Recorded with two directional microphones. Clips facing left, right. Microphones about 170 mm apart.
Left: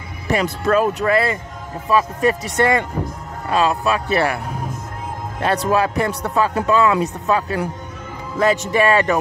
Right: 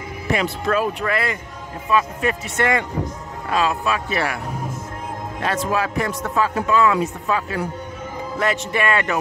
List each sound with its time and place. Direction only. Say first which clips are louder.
0.3 s speech: left 3 dB; 40° left (ahead or behind)
5.7 s speech: left 4 dB; 35° left (ahead or behind)